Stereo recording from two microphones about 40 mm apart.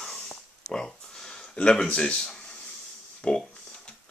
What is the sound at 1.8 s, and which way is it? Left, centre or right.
Speech, left.